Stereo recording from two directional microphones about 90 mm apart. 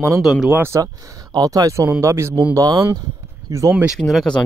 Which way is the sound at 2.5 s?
40° right (ahead or behind).